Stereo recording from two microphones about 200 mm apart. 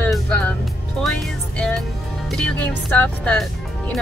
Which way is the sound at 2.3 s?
5° left (ahead or behind).